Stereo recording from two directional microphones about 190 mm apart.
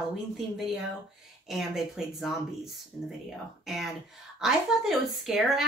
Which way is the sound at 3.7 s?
Centre (ahead or behind).